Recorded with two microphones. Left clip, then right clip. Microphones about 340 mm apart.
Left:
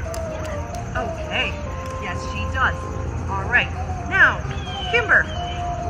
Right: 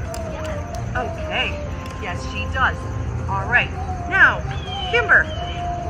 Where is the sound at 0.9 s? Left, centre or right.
Centre.